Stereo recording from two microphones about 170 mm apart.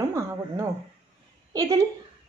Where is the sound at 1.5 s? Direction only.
20° right (ahead or behind).